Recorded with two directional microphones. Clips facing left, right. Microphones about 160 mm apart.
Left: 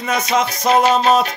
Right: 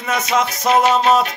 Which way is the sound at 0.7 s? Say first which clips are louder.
Even; 35° left (ahead or behind).